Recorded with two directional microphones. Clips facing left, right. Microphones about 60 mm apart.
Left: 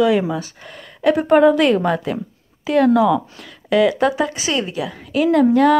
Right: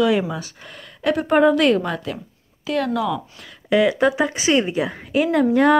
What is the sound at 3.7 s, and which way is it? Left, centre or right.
Speech, centre.